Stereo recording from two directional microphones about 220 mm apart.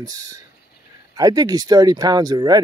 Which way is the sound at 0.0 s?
15° right (ahead or behind).